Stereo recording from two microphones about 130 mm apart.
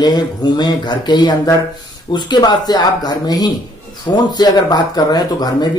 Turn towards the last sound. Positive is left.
turn(degrees=30)  # may be behind; listen again after turning